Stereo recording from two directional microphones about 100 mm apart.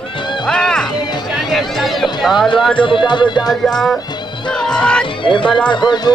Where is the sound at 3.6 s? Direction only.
5° left (ahead or behind).